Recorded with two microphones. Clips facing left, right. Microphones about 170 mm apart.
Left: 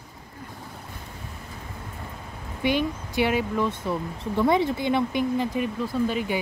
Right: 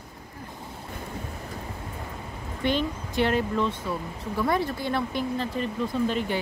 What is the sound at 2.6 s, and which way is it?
Speech, 10° left (ahead or behind).